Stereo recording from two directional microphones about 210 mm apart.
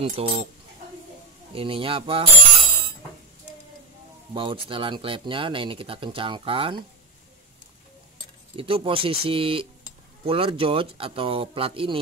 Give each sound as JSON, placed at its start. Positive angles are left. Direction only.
{"t": 0.0, "sound": "speech", "side_deg": -25}
{"t": 1.5, "sound": "speech", "side_deg": -25}
{"t": 4.3, "sound": "speech", "side_deg": -25}
{"t": 8.5, "sound": "speech", "side_deg": -25}